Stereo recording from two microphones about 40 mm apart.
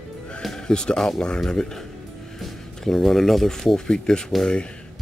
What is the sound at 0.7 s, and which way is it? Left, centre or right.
Speech, left.